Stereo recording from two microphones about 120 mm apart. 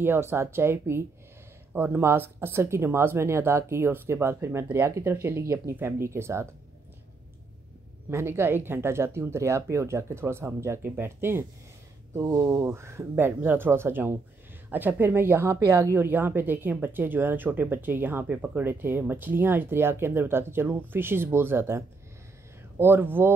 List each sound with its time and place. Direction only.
0.0 s speech: 20° right (ahead or behind)
8.1 s speech: 20° right (ahead or behind)
12.3 s speech: 30° right (ahead or behind)